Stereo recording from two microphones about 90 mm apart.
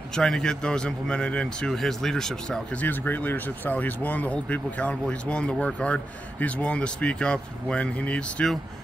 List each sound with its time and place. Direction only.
0.1 s speech: 5° left (ahead or behind)
2.8 s speech: 20° left (ahead or behind)